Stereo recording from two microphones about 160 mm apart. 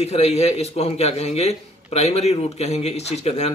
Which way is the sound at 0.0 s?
40° left (ahead or behind).